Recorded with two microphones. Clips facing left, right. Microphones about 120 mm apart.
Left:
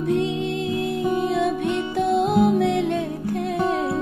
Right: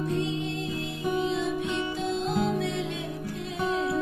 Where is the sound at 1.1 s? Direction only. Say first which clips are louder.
Left 3 dB; 55° left (ahead or behind).